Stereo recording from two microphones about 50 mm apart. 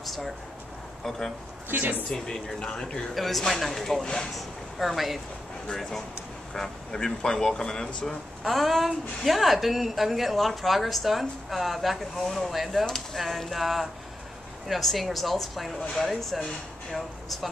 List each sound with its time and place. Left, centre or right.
1.0 s speech: centre
1.7 s speech: right
2.0 s speech: centre
3.2 s a woman's voice: centre
4.4 s a woman's voice: centre
8.5 s a woman's voice: centre